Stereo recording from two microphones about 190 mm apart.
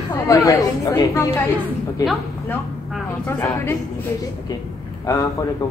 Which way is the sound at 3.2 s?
10° left (ahead or behind).